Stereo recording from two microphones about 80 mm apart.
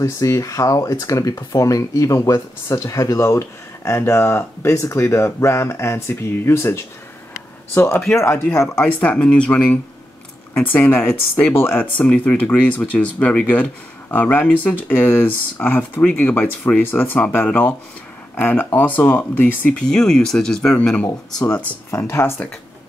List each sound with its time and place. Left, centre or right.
0.0 s speech: left
8.8 s speech: centre
19.8 s speech: centre
21.9 s speech: left